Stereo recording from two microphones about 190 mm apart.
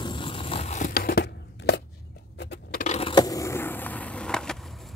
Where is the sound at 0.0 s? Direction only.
25° left (ahead or behind); by 2.8 s 60° left (ahead or behind).